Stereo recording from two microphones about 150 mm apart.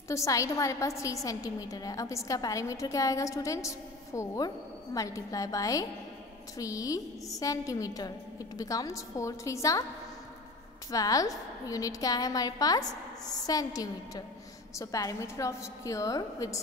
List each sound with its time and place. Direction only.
0.1 s a woman's voice: 20° left (ahead or behind)
10.9 s a woman's voice: 25° left (ahead or behind)